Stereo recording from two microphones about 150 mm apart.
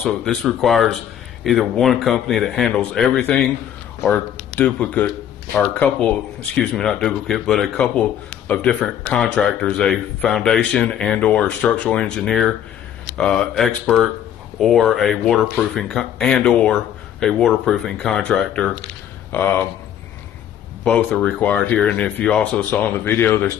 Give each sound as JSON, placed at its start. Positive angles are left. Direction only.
{"t": 0.0, "sound": "speech", "side_deg": 5}
{"t": 20.8, "sound": "speech", "side_deg": 5}